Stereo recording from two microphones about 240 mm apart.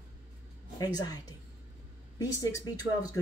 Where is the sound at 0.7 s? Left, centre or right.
Centre.